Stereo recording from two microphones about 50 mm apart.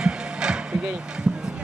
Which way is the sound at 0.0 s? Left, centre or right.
Centre.